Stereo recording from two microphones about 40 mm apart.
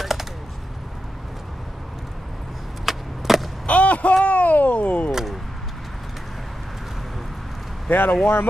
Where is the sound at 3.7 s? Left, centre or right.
Left.